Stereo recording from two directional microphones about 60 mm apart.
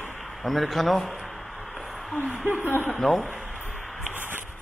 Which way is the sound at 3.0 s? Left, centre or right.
Centre.